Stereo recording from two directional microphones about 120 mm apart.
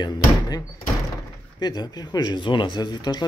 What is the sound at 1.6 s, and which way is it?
Speech, 35° left (ahead or behind).